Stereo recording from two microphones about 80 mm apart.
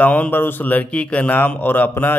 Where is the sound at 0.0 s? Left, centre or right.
Centre.